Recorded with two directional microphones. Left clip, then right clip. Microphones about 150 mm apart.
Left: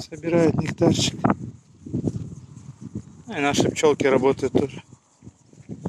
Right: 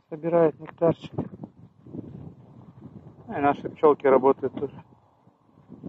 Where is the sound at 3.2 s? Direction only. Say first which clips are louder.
Left 2 dB; 15° left (ahead or behind).